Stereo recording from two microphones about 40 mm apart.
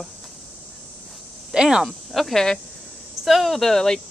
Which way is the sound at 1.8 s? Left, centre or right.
Centre.